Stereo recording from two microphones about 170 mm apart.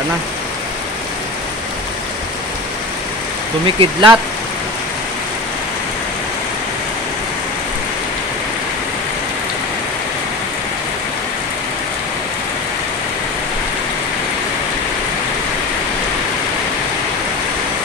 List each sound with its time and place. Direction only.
3.6 s speech: 30° right (ahead or behind)